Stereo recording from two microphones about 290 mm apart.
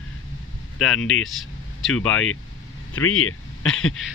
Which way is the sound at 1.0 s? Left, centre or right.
Left.